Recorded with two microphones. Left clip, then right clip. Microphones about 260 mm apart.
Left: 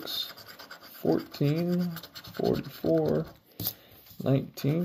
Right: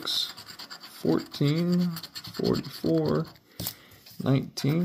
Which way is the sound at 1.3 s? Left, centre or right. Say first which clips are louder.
Right 1 dB; right.